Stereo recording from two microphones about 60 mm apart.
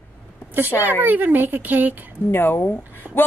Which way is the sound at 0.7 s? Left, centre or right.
Left.